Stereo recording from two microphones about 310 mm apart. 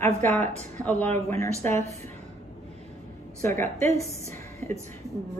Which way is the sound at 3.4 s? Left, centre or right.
Centre.